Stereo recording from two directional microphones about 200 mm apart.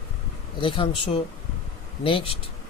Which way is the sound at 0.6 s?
25° left (ahead or behind).